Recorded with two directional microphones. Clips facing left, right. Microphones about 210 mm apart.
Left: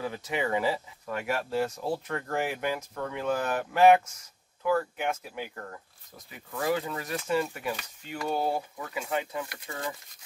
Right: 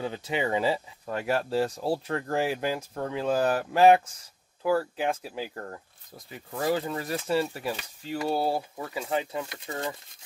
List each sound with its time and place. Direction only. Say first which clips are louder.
0.0 s speech: right 2 dB; 25° right (ahead or behind)